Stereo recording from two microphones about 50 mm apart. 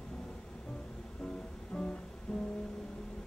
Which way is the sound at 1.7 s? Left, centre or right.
Centre.